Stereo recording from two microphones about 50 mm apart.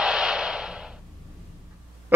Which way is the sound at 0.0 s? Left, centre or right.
Centre.